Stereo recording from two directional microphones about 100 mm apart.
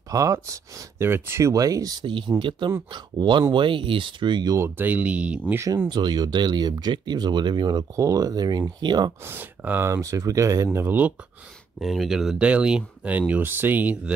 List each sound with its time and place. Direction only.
0.1 s speech: 35° right (ahead or behind)
2.0 s speech: 55° right (ahead or behind)
4.6 s speech: 25° right (ahead or behind)
5.9 s speech: 45° right (ahead or behind)
7.9 s speech: 30° right (ahead or behind)
9.2 s speech: 20° right (ahead or behind)
11.8 s speech: centre (ahead or behind)